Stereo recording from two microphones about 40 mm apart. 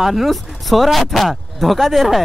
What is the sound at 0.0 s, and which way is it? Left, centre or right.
Speech, centre.